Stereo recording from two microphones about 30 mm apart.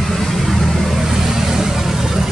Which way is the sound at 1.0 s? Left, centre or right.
Centre.